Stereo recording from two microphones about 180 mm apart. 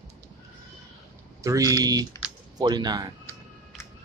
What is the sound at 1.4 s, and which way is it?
Speech, 20° right (ahead or behind).